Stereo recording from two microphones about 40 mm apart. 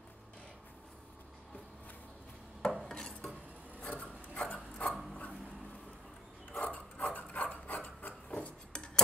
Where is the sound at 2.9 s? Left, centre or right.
Centre.